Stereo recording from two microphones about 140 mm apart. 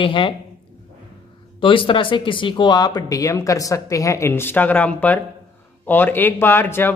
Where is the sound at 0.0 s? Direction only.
35° left (ahead or behind).